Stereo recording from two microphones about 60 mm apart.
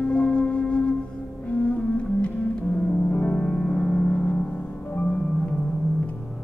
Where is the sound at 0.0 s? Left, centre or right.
Centre.